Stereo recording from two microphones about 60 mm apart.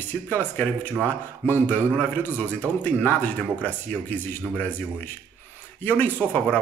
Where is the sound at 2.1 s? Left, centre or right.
Left.